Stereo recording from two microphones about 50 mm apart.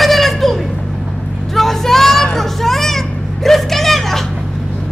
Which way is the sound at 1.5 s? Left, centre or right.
Centre.